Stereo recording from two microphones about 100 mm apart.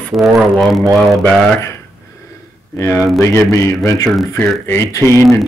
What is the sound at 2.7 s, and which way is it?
Speech, 30° left (ahead or behind).